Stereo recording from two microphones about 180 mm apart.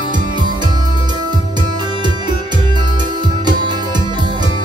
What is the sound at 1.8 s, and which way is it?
Music, 25° right (ahead or behind).